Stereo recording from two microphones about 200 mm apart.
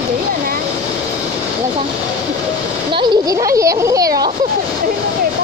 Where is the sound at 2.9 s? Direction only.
15° right (ahead or behind).